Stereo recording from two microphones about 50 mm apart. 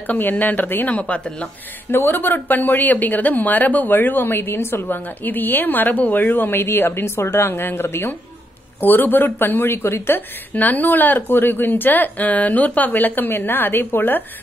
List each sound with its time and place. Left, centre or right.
0.0 s speech: left
0.8 s speech: left
1.9 s speech: left
4.8 s speech: left
10.5 s speech: left